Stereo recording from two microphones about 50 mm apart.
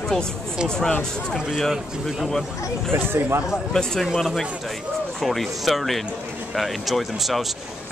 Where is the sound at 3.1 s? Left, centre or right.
Right.